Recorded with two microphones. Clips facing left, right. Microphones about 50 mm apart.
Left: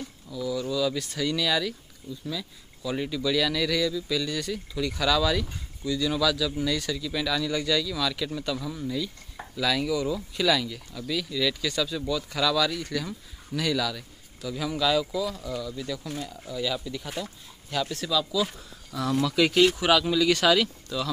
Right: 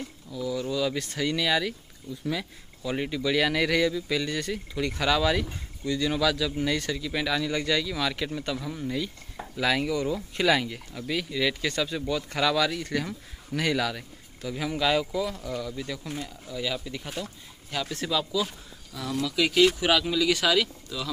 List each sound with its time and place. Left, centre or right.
0.3 s speech: centre
2.0 s speech: centre
2.8 s speech: right
17.2 s speech: centre
17.9 s speech: right
18.9 s speech: centre